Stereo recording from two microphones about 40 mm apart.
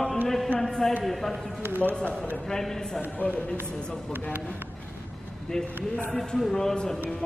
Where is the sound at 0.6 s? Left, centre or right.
Centre.